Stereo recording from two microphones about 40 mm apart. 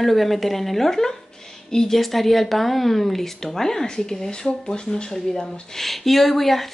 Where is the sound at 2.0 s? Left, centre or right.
Centre; by 5.2 s left.